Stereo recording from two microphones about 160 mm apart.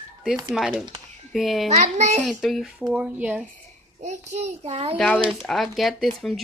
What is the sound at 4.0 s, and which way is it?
Speech, 45° right (ahead or behind).